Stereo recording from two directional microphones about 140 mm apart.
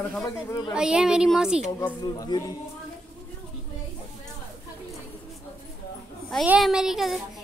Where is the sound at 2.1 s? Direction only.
25° left (ahead or behind).